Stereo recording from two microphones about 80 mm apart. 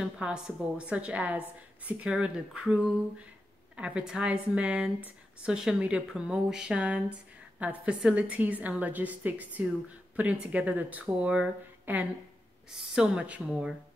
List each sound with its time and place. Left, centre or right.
0.0 s speech: centre